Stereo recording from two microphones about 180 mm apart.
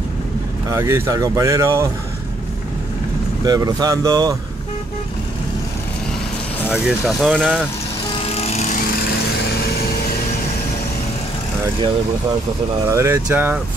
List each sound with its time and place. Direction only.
0.7 s speech: 15° right (ahead or behind)
3.4 s speech: 20° right (ahead or behind)
6.7 s speech: 5° right (ahead or behind)
8.3 s vehicle: 35° left (ahead or behind)
12.8 s speech: 15° right (ahead or behind)